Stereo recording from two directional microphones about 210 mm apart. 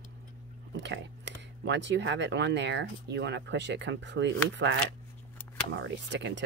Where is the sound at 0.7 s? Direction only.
55° right (ahead or behind).